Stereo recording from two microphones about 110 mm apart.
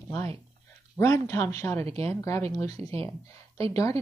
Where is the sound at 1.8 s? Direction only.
70° right (ahead or behind).